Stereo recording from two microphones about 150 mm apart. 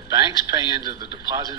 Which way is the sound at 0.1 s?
25° right (ahead or behind).